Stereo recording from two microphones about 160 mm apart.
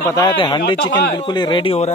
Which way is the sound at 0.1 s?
25° left (ahead or behind).